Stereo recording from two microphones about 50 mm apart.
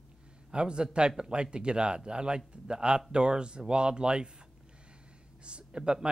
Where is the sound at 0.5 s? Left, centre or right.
Centre.